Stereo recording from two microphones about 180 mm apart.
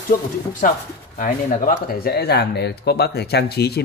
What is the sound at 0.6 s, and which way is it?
Speech, 50° left (ahead or behind).